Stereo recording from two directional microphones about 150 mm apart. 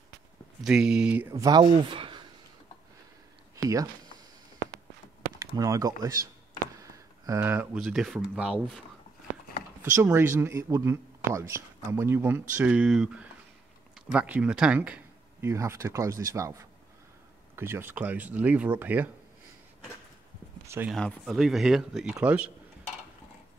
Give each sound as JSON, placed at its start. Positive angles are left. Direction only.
{"t": 0.7, "sound": "speech", "side_deg": -5}
{"t": 1.3, "sound": "speech", "side_deg": -25}
{"t": 5.6, "sound": "speech", "side_deg": -20}
{"t": 9.8, "sound": "speech", "side_deg": -15}
{"t": 17.6, "sound": "speech", "side_deg": -15}
{"t": 20.6, "sound": "speech", "side_deg": -15}
{"t": 20.9, "sound": "speech", "side_deg": 0}